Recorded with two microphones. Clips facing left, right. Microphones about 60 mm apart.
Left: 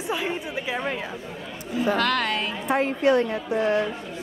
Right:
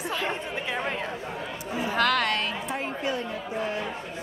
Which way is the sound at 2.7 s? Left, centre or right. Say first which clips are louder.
Left 13 dB; left.